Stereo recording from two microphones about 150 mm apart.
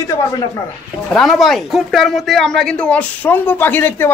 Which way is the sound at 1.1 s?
Centre (ahead or behind).